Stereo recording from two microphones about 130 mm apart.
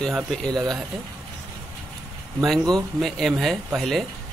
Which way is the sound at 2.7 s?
Centre (ahead or behind).